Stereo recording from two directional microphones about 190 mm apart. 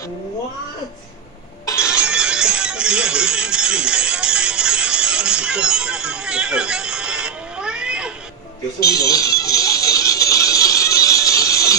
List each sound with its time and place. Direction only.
1.8 s music: 5° right (ahead or behind)
8.8 s music: 20° left (ahead or behind)